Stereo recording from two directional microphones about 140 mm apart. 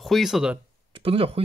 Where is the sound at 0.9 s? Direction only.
40° right (ahead or behind).